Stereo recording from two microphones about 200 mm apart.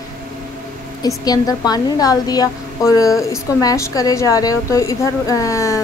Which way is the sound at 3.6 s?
15° left (ahead or behind).